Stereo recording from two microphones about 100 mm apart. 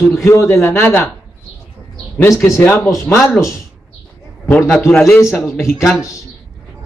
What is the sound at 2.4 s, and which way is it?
A man's voice, 30° left (ahead or behind).